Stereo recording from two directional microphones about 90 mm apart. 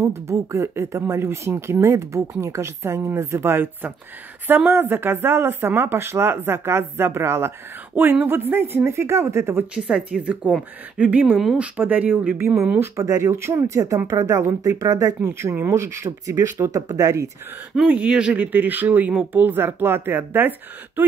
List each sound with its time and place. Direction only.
0.0 s speech: 30° right (ahead or behind)
9.8 s speech: 10° right (ahead or behind)
12.9 s speech: 35° right (ahead or behind)
17.7 s speech: 10° right (ahead or behind)